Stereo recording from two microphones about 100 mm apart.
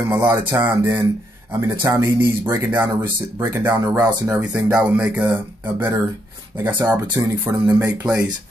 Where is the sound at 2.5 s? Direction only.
35° right (ahead or behind).